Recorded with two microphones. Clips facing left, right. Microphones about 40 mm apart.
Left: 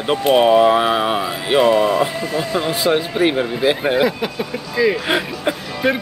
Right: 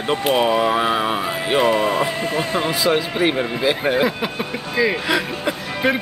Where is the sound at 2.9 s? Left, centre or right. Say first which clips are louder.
Left 2 dB; centre.